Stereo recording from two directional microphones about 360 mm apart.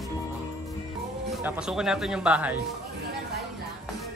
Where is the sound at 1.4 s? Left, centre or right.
Centre.